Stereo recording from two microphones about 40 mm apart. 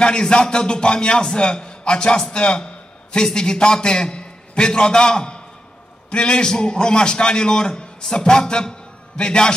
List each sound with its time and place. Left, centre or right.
0.0 s a man's voice: left